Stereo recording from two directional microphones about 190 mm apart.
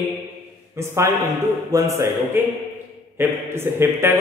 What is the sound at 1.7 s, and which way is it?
Mantra, 15° right (ahead or behind).